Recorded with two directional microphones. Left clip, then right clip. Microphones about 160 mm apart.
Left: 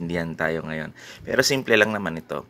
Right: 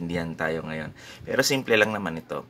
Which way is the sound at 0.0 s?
35° left (ahead or behind).